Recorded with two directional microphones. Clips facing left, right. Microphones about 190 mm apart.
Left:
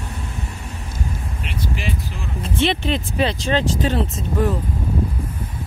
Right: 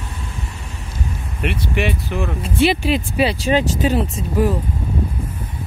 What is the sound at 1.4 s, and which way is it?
Speech, 65° right (ahead or behind).